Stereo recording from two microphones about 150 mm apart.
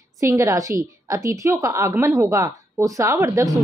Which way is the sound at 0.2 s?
20° right (ahead or behind).